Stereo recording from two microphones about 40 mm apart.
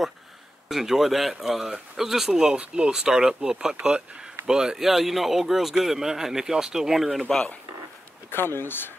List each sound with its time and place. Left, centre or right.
0.7 s speech: centre
8.3 s speech: left